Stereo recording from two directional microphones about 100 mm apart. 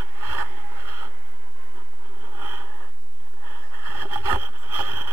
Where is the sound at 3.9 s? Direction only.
20° right (ahead or behind).